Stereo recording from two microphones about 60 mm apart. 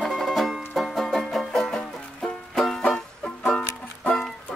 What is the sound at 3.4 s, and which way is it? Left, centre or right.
Music, left.